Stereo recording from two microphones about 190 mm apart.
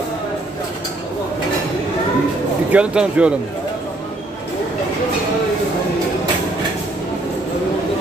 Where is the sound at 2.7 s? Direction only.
5° right (ahead or behind).